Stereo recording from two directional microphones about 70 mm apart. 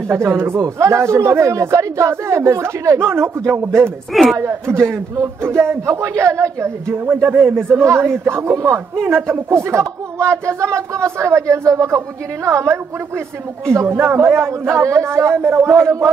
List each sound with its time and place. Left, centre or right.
0.1 s speech: right
4.1 s speech: centre
4.4 s speech: right
6.9 s speech: right
9.0 s speech: right
9.5 s speech: right
13.8 s speech: right